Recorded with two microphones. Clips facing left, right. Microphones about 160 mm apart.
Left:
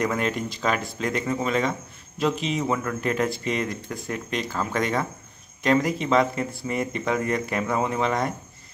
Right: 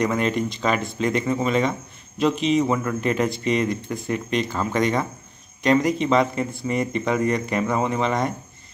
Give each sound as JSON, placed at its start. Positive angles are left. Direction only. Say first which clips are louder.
{"t": 0.0, "sound": "speech", "louder": "right 3 dB", "side_deg": 5}